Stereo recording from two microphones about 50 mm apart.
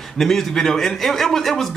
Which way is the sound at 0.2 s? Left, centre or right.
Centre.